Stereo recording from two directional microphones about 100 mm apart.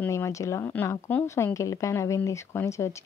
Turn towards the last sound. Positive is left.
turn(degrees=30)  # may be behind; listen again after turning